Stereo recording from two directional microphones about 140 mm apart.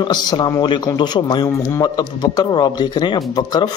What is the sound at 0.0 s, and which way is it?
A man's voice, 30° left (ahead or behind).